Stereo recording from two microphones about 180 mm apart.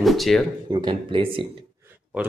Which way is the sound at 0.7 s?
30° right (ahead or behind).